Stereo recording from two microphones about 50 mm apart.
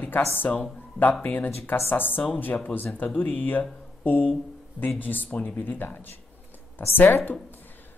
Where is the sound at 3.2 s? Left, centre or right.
Left.